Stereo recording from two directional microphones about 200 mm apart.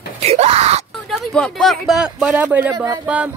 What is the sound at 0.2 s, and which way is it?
Wail, 30° right (ahead or behind).